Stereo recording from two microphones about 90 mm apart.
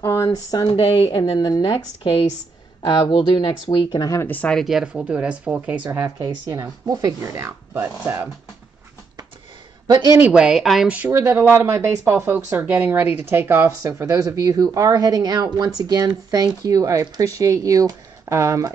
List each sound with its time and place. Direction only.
0.0 s a sound: 30° left (ahead or behind)
0.3 s speech: 45° left (ahead or behind)
0.7 s a woman's voice: 80° left
2.8 s speech: 65° left (ahead or behind)
3.9 s speech: 45° left (ahead or behind)
4.2 s speech: 20° left (ahead or behind)
4.6 s speech: 5° right (ahead or behind)
5.9 s speech: 40° right (ahead or behind)
10.2 s speech: 10° right (ahead or behind)
11.1 s speech: 30° right (ahead or behind)